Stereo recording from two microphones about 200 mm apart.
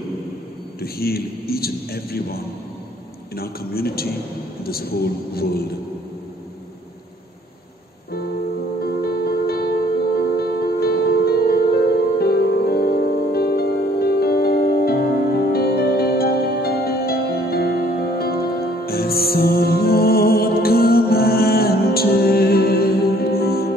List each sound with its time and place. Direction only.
0.7 s a man's voice: 50° left (ahead or behind)
8.8 s music: 50° left (ahead or behind)